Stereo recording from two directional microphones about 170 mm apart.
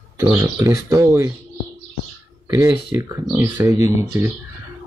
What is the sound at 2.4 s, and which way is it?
Speech, 15° right (ahead or behind).